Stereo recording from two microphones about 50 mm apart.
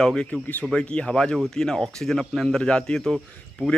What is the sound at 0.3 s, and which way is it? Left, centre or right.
Speech, left.